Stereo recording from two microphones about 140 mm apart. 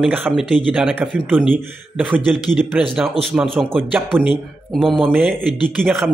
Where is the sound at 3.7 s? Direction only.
10° right (ahead or behind).